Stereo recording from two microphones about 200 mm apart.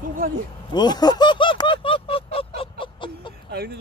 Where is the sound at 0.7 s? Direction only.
20° left (ahead or behind).